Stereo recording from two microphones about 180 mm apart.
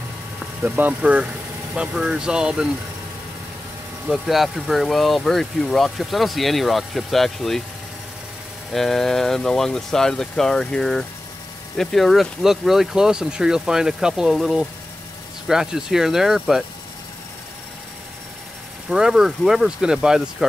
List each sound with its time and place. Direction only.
0.6 s speech: 10° right (ahead or behind)
4.1 s speech: centre (ahead or behind)
8.7 s speech: centre (ahead or behind)
18.9 s speech: 5° right (ahead or behind)